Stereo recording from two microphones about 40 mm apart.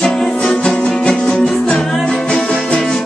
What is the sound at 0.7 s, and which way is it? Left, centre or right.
Music, centre.